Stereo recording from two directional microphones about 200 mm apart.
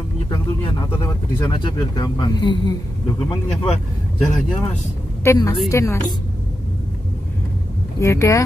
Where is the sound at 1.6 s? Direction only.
20° left (ahead or behind).